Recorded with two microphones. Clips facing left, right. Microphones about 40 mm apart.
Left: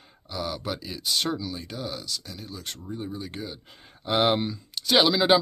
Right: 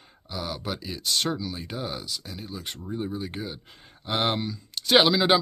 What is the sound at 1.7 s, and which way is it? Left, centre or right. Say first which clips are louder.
Speech: right 1 dB; centre.